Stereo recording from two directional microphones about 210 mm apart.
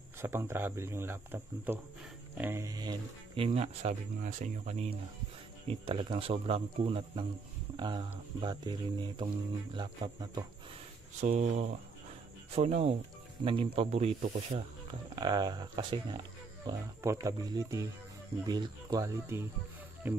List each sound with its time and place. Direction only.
0.2 s speech: 10° right (ahead or behind)
11.1 s speech: 35° right (ahead or behind); by 20.2 s 10° right (ahead or behind)